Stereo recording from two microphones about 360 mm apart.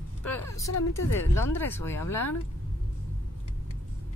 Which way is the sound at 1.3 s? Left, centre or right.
Centre.